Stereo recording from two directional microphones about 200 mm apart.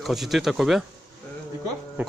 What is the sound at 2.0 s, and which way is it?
Speech, 10° right (ahead or behind).